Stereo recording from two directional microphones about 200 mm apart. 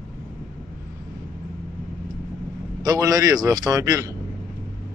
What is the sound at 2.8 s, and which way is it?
A man's voice, 15° right (ahead or behind).